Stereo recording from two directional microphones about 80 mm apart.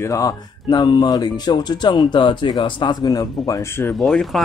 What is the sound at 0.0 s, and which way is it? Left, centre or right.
Speech, left.